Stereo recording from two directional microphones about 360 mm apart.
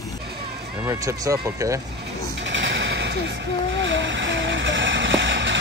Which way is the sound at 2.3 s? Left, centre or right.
Right.